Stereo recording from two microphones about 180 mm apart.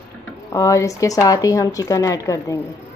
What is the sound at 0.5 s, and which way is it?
A woman's voice, 20° left (ahead or behind).